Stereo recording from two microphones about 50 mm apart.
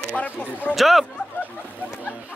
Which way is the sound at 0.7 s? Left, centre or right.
Centre.